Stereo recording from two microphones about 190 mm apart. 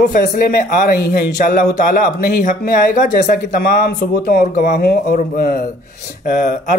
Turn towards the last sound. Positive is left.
turn(degrees=40)  # may be behind; listen again after turning